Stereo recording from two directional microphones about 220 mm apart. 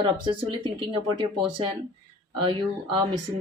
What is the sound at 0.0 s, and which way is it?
Speech, 20° right (ahead or behind).